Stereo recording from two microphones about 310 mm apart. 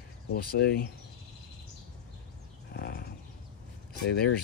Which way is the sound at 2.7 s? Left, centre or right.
Left.